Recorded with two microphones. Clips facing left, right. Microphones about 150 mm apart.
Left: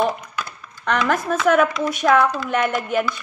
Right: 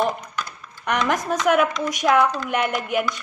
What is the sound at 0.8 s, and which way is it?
A woman's voice, 15° right (ahead or behind).